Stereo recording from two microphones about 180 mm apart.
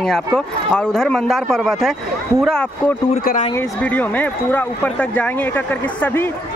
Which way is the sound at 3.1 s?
40° left (ahead or behind).